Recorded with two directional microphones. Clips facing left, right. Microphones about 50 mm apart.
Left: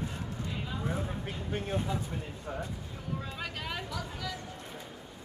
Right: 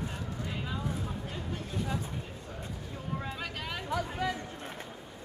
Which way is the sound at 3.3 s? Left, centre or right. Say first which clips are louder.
Even; centre.